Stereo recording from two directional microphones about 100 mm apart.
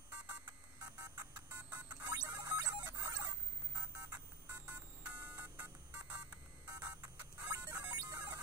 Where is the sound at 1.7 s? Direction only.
40° right (ahead or behind).